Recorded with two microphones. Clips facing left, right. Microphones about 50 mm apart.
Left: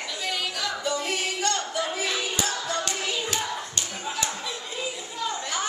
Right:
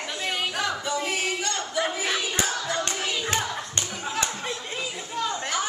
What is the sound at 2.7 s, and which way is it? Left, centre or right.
Clapping, right.